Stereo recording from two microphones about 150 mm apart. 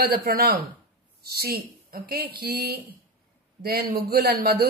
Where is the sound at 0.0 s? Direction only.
80° right.